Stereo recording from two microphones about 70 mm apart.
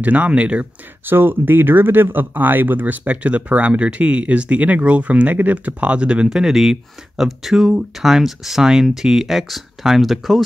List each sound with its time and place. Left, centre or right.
0.0 s speech: right
1.0 s speech: right; by 10.4 s centre